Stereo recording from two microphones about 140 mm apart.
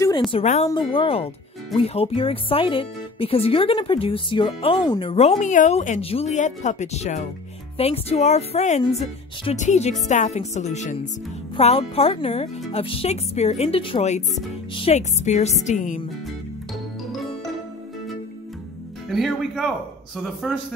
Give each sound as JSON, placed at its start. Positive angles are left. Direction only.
{"t": 0.3, "sound": "speech", "side_deg": 45}
{"t": 5.4, "sound": "speech", "side_deg": 65}
{"t": 11.5, "sound": "speech", "side_deg": 45}
{"t": 14.8, "sound": "speech", "side_deg": 55}
{"t": 19.0, "sound": "speech", "side_deg": 0}